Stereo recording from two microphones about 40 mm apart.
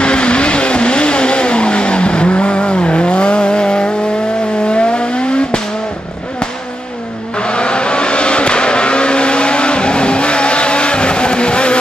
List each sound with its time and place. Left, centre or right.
0.0 s vehicle: left
7.3 s vehicle: left